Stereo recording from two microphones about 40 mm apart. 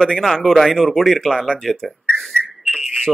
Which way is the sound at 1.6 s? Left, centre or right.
Centre.